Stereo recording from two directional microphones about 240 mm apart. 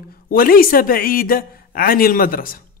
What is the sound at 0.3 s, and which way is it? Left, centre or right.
A man's voice, left.